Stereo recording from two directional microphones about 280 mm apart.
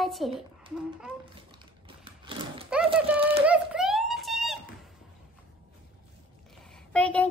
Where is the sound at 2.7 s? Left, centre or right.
Centre.